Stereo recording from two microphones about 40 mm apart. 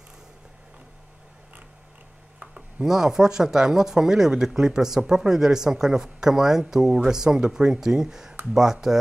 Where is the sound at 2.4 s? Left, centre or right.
Right.